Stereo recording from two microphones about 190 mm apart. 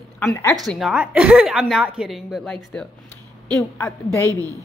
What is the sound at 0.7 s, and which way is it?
Speech, 5° right (ahead or behind).